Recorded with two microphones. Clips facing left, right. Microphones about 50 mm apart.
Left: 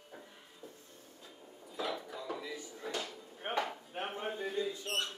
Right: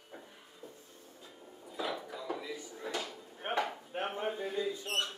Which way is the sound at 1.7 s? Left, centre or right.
Centre.